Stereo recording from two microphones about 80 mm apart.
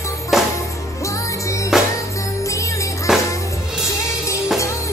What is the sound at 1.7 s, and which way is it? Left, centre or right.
Music, centre.